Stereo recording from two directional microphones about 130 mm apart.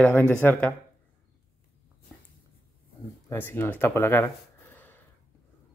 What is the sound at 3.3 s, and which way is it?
Speech, 15° left (ahead or behind).